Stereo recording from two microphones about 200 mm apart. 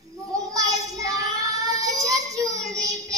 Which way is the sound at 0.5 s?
15° right (ahead or behind).